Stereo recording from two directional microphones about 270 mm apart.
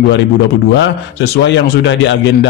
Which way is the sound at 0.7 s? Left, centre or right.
Left.